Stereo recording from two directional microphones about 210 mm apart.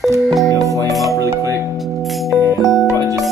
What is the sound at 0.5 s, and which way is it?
Music, 15° right (ahead or behind).